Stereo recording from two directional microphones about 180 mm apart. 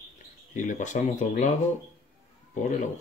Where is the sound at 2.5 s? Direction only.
45° left (ahead or behind).